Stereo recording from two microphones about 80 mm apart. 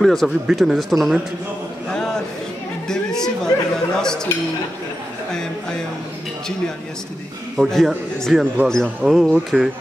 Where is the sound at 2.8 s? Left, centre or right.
Centre.